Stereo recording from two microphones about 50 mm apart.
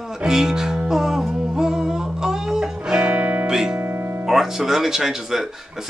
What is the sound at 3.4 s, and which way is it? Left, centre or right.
Music, centre.